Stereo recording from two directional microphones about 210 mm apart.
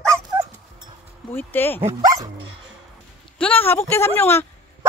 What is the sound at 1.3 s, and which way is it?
Speech, 10° left (ahead or behind).